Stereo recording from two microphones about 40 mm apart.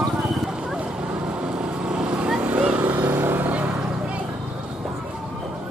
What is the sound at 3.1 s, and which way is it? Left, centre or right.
Vehicle, right.